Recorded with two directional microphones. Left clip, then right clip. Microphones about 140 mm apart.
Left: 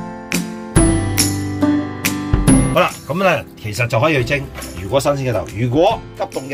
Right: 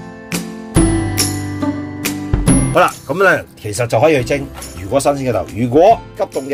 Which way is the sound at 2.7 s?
40° right (ahead or behind).